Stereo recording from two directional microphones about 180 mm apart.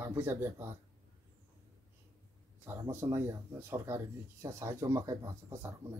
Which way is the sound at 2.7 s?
15° right (ahead or behind).